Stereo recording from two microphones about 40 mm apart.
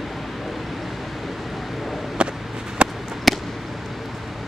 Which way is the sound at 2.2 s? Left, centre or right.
Right.